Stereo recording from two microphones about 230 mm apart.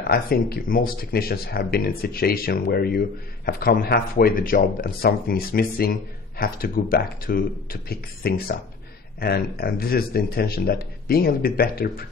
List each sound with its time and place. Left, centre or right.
0.0 s speech: left